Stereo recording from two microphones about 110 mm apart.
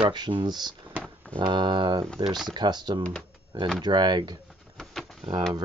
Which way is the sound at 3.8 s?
40° right (ahead or behind).